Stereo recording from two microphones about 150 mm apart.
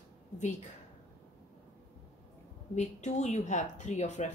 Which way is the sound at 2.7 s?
50° left (ahead or behind).